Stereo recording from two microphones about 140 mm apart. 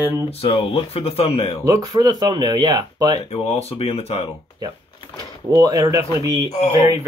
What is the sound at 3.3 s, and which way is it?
Speech, 45° left (ahead or behind).